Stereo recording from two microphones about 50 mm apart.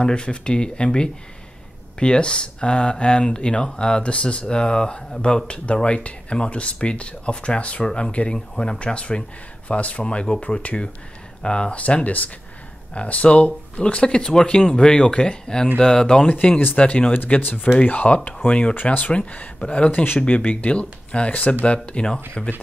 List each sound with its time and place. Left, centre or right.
0.0 s speech: centre
16.3 s speech: left
17.1 s speech: left
17.7 s speech: left
19.9 s speech: left
20.2 s speech: left